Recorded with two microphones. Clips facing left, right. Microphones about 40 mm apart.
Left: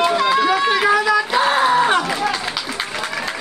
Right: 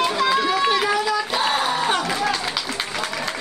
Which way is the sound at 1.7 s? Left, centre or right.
Left.